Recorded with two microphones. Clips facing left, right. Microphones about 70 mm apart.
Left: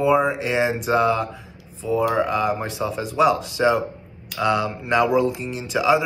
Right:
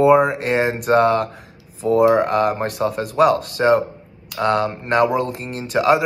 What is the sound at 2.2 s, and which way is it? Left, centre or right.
Speech, right.